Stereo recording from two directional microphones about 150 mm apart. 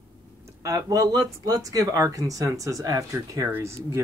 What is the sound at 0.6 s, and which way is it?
Speech, 20° right (ahead or behind).